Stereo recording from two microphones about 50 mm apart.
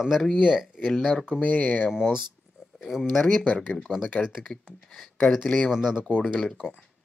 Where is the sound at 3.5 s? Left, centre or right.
Left.